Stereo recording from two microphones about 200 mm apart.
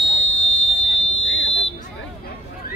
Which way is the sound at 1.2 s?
70° left (ahead or behind).